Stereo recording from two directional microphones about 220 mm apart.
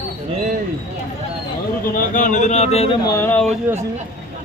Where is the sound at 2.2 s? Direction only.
35° left (ahead or behind).